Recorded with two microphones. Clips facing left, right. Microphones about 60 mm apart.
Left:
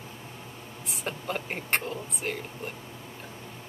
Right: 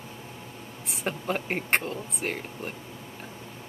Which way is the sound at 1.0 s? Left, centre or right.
Right.